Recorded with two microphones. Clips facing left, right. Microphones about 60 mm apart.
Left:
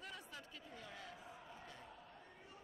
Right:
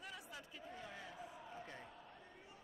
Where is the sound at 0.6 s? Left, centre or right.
Centre.